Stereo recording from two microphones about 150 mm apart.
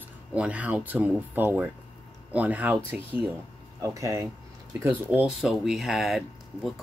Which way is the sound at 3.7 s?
20° right (ahead or behind).